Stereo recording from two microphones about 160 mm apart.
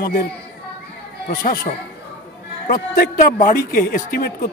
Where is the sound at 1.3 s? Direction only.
60° left (ahead or behind).